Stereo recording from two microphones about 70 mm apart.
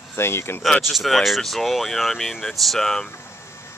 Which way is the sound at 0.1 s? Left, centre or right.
Left.